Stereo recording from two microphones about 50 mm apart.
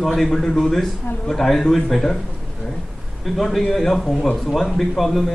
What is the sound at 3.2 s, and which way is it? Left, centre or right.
A man's voice, centre.